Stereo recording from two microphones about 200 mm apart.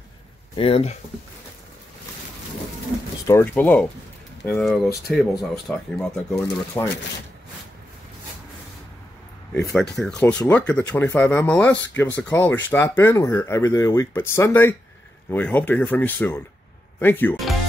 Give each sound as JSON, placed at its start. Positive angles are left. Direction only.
{"t": 0.6, "sound": "speech", "side_deg": 30}
{"t": 3.3, "sound": "speech", "side_deg": 10}
{"t": 9.8, "sound": "speech", "side_deg": 5}